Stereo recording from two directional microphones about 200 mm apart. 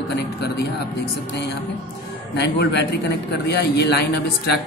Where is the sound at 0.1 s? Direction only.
55° left (ahead or behind).